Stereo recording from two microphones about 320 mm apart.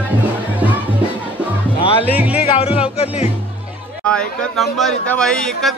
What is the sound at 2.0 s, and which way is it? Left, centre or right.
Speech, centre.